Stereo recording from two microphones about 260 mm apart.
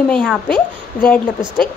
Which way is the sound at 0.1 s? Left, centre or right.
Centre.